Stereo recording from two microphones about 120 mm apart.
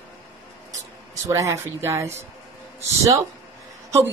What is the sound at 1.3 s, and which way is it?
Speech, 25° right (ahead or behind).